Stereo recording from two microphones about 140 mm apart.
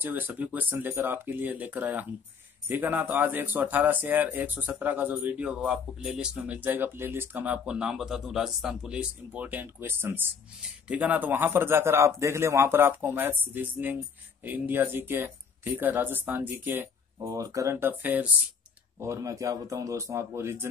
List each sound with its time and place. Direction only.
0.0 s speech: 15° right (ahead or behind)